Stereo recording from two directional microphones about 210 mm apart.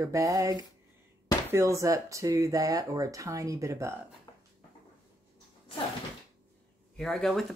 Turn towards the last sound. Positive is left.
turn(degrees=0)  # may be behind; listen again after turning